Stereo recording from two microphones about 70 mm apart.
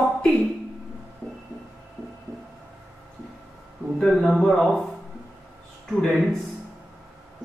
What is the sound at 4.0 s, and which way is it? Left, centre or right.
Speech, centre.